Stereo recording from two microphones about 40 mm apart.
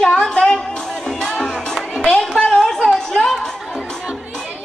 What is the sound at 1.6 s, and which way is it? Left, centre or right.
Music, centre.